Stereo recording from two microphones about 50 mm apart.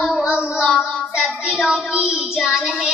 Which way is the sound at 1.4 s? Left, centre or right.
Centre.